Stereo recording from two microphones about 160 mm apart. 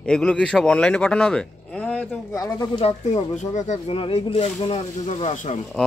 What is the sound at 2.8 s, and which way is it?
Speech, 45° left (ahead or behind).